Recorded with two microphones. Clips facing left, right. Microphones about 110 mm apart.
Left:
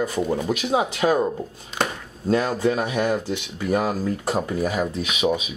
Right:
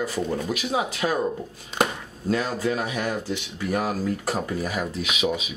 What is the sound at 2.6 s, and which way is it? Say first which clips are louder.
Speech: left 4 dB; 25° left (ahead or behind).